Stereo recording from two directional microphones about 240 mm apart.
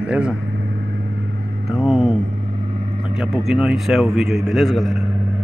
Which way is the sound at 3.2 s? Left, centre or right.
Centre.